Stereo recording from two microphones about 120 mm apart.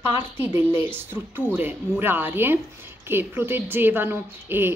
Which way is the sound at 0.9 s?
15° right (ahead or behind).